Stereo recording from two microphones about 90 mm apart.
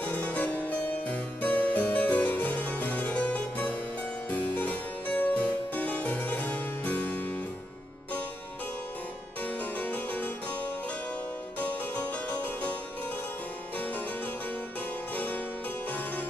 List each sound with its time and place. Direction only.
0.0 s harpsichord: 15° left (ahead or behind)
9.8 s harpsichord: 15° left (ahead or behind)
11.6 s music: 15° left (ahead or behind)